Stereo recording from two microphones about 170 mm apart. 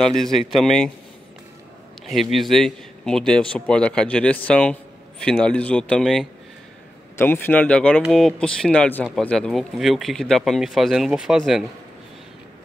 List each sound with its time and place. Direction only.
0.0 s speech: centre (ahead or behind)
2.0 s speech: centre (ahead or behind)
7.2 s speech: 10° left (ahead or behind); by 11.6 s 5° right (ahead or behind)